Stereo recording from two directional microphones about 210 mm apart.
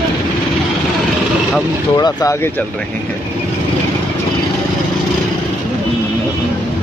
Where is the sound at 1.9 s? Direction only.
20° left (ahead or behind).